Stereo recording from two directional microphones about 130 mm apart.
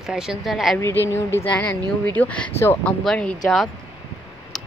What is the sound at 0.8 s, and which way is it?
A woman's voice, 20° left (ahead or behind).